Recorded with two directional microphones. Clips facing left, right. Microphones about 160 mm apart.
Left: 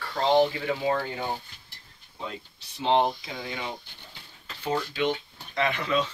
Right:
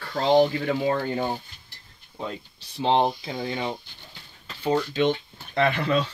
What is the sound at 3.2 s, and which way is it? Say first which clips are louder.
Speech: right 6 dB; 30° right (ahead or behind).